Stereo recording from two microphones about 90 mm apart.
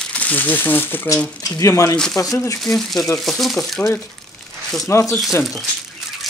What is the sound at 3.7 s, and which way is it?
Speech, 15° left (ahead or behind).